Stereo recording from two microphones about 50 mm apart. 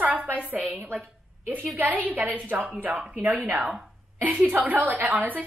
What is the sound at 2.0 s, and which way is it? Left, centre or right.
A woman's voice, right.